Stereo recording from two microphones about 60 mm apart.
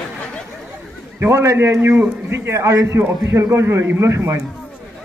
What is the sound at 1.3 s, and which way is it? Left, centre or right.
A man's voice, right.